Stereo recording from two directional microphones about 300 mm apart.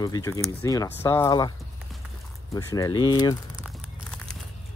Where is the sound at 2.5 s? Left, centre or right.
Centre.